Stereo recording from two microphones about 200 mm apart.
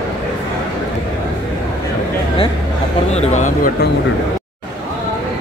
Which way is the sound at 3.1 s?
35° left (ahead or behind).